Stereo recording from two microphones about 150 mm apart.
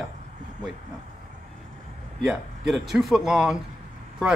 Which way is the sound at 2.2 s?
5° right (ahead or behind).